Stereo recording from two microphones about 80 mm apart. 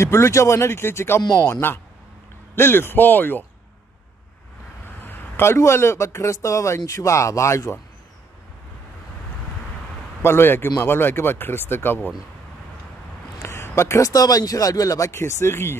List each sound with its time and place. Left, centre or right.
0.0 s a man's voice: left
5.0 s a man's voice: left
10.2 s speech: left
13.4 s a man's voice: left